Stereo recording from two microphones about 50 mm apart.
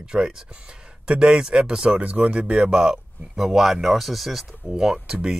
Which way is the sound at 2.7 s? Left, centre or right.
Centre.